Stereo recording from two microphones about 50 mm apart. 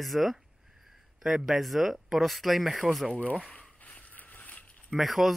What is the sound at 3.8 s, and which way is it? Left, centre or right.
Vehicle, left.